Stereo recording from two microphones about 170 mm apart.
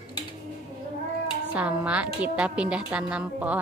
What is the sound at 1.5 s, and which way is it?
A woman's voice, 5° right (ahead or behind).